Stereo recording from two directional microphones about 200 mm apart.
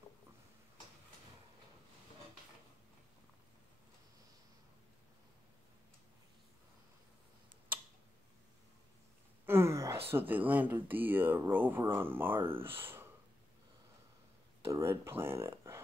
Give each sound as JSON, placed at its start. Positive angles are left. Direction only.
{"t": 9.5, "sound": "a sound", "side_deg": -15}
{"t": 10.1, "sound": "speech", "side_deg": -10}
{"t": 12.4, "sound": "speech", "side_deg": -25}
{"t": 12.6, "sound": "speech", "side_deg": -10}
{"t": 14.6, "sound": "speech", "side_deg": -15}